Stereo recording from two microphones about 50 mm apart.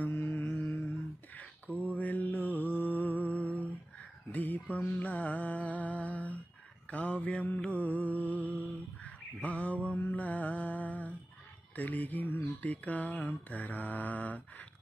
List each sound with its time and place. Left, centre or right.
0.5 s mantra: left
1.3 s a sound: left
1.9 s mantra: left
4.3 s a sound: left
4.9 s humming: left
6.9 s mantra: left
11.7 s speech: left